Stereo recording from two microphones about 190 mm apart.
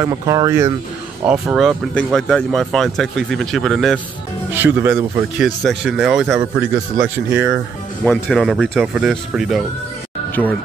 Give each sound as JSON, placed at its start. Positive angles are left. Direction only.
{"t": 0.0, "sound": "speech", "side_deg": -15}
{"t": 1.2, "sound": "speech", "side_deg": -5}
{"t": 4.6, "sound": "speech", "side_deg": -10}
{"t": 5.6, "sound": "speech", "side_deg": 0}
{"t": 8.0, "sound": "speech", "side_deg": 5}
{"t": 10.3, "sound": "speech", "side_deg": 10}